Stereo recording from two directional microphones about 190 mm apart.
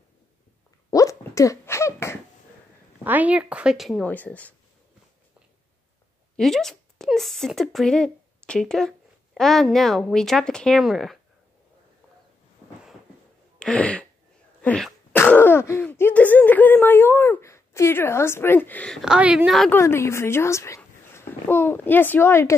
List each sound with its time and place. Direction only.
0.8 s a sound: 15° left (ahead or behind)
3.0 s speech: 10° right (ahead or behind); by 4.6 s 10° left (ahead or behind)
6.3 s speech: centre (ahead or behind)
13.6 s throat clearing: 5° left (ahead or behind)
14.6 s cough: 5° left (ahead or behind)
15.1 s throat clearing: 10° left (ahead or behind)
19.7 s a woman's voice: 15° left (ahead or behind)